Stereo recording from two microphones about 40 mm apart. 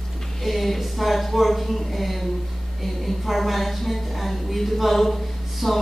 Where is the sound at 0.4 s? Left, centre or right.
Centre.